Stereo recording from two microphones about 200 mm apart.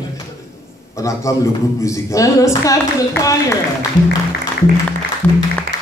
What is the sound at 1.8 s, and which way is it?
A man's voice, 15° left (ahead or behind).